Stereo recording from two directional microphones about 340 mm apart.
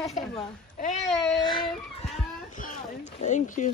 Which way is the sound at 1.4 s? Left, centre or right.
Centre.